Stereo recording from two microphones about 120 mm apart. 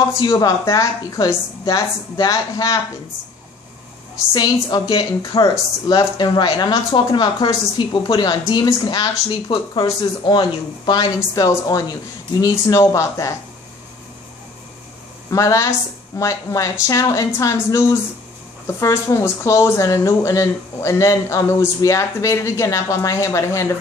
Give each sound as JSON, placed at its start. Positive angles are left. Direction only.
{"t": 0.2, "sound": "a woman's voice", "side_deg": 30}
{"t": 4.3, "sound": "a woman's voice", "side_deg": 35}
{"t": 11.3, "sound": "speech", "side_deg": 30}
{"t": 15.2, "sound": "speech", "side_deg": 25}